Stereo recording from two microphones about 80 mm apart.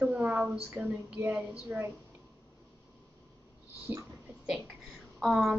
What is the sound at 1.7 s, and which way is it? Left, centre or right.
Speech, right.